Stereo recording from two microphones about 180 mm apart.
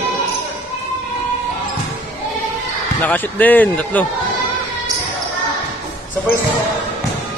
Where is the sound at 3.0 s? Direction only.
10° left (ahead or behind).